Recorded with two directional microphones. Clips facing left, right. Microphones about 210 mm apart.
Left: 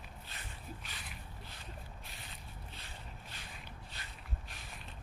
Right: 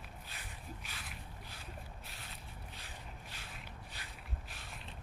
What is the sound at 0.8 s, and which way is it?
Mechanisms, 5° right (ahead or behind).